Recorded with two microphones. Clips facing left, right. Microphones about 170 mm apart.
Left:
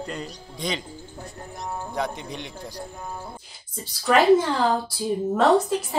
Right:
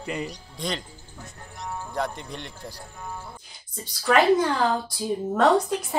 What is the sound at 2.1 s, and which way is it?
Speech, 5° left (ahead or behind).